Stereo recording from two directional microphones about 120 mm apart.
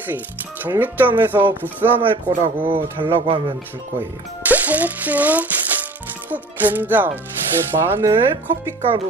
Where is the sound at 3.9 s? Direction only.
15° right (ahead or behind).